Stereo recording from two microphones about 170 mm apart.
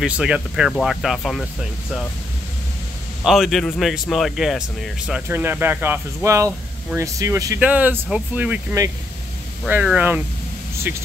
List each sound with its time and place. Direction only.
0.0 s speech: 5° right (ahead or behind)
3.3 s speech: centre (ahead or behind)
8.8 s speech: 20° right (ahead or behind)
9.7 s speech: 10° right (ahead or behind)